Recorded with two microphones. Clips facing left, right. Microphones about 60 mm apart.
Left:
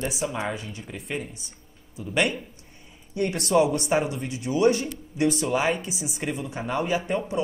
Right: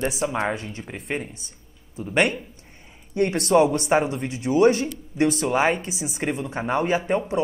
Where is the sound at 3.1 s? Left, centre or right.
Right.